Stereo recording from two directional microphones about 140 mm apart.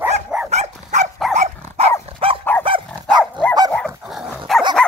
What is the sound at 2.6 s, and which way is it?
Dog, 35° right (ahead or behind).